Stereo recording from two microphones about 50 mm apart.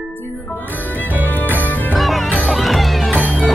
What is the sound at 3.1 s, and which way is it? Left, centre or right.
Music, right.